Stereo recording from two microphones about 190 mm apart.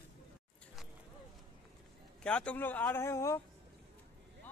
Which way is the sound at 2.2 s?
5° left (ahead or behind).